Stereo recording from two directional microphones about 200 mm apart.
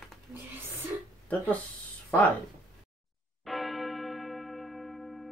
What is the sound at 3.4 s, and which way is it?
Church bell, centre (ahead or behind).